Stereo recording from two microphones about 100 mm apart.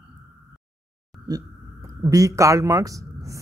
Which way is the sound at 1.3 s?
40° right (ahead or behind).